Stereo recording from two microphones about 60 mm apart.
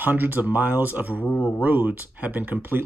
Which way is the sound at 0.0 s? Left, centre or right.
Right.